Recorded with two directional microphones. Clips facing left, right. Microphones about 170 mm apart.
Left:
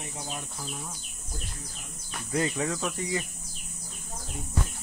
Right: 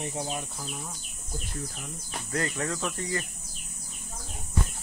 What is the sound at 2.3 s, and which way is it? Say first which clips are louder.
Speech: left 2 dB; 10° left (ahead or behind).